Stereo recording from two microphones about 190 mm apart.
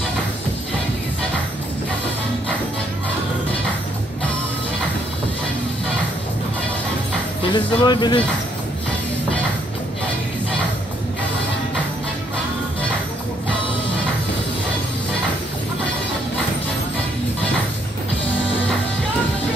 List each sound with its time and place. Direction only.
7.5 s speech: 25° left (ahead or behind)